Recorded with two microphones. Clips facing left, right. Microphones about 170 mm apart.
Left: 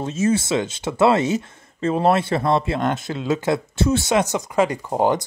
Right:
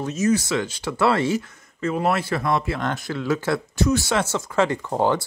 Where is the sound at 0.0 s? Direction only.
25° left (ahead or behind).